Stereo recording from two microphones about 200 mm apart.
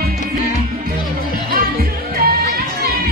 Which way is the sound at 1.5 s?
50° right (ahead or behind).